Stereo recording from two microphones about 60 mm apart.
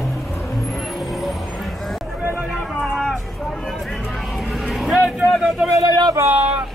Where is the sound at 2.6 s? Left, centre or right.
Centre.